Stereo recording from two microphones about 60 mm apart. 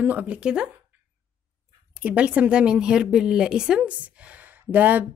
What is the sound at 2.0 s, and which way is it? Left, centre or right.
A woman's voice, right.